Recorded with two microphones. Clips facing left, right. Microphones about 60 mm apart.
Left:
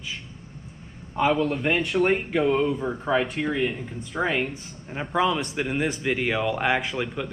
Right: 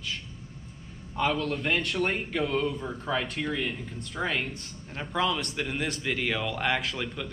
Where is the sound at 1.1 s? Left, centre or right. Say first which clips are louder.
Left 5 dB; centre.